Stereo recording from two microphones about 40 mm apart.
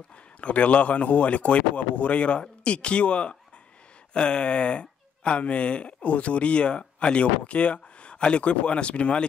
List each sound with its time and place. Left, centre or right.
0.4 s speech: left